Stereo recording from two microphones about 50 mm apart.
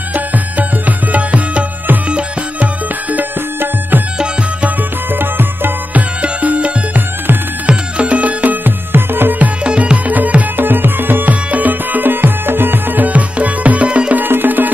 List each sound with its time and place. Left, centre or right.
0.1 s music: right
4.2 s music: right
5.1 s music: right
6.2 s music: right
9.7 s music: right
10.0 s music: right
14.1 s music: right